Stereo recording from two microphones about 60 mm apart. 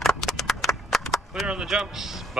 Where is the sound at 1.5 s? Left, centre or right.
Centre.